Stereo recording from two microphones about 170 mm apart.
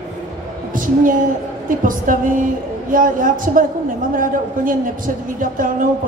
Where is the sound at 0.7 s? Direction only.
55° right (ahead or behind).